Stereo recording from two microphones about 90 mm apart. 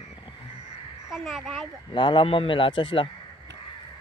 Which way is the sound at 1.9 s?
65° left (ahead or behind).